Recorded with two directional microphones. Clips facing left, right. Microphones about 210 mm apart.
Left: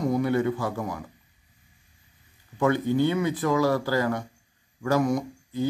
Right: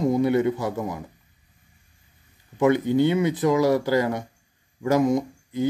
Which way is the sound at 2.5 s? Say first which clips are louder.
Right 4 dB; 20° right (ahead or behind).